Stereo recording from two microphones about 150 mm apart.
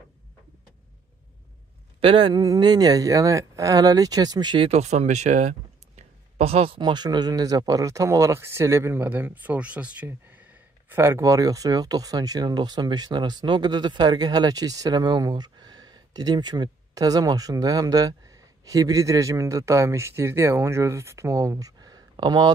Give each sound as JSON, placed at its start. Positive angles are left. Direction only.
{"t": 2.0, "sound": "speech", "side_deg": -35}
{"t": 4.6, "sound": "speech", "side_deg": -45}